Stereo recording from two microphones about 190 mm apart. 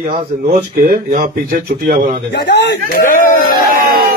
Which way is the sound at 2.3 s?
65° left (ahead or behind).